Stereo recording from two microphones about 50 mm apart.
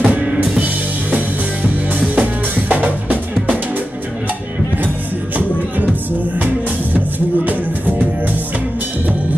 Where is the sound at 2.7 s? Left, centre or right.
Right.